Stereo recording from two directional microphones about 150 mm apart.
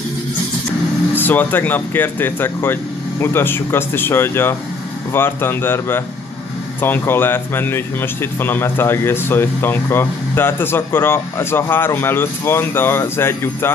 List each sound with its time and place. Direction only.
1.1 s speech: 10° left (ahead or behind)